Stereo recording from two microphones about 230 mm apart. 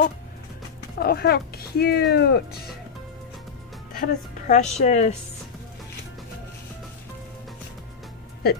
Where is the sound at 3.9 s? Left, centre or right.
Left.